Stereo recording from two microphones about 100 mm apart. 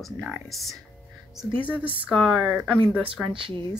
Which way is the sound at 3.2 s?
55° right (ahead or behind).